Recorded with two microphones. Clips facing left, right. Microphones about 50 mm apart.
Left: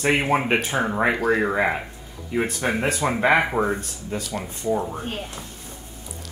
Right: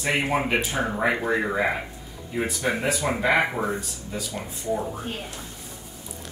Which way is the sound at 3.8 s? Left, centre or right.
Left.